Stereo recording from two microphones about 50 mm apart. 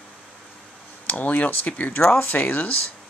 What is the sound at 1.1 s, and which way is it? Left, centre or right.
Speech, left.